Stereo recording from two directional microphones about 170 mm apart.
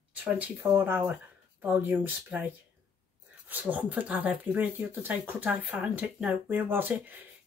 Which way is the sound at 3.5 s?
10° right (ahead or behind).